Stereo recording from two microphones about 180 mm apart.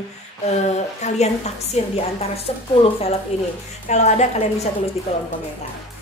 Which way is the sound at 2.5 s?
35° left (ahead or behind).